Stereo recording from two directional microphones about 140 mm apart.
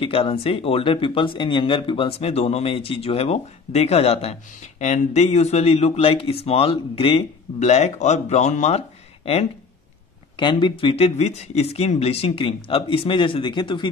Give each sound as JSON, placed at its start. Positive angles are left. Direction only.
{"t": 0.0, "sound": "speech", "side_deg": 40}
{"t": 10.3, "sound": "speech", "side_deg": 35}